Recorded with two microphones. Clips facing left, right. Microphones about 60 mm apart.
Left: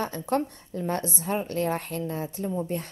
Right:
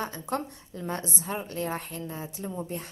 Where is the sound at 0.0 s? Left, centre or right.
Left.